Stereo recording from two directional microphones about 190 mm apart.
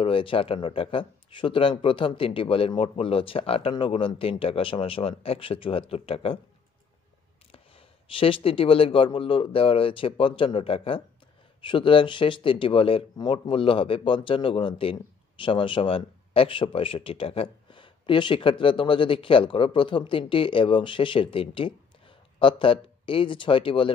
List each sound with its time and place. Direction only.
0.0 s speech: 30° left (ahead or behind)
7.5 s speech: 30° left (ahead or behind)